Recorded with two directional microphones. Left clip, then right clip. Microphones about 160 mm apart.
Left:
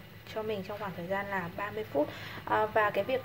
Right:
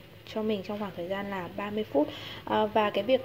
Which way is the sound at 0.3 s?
30° right (ahead or behind).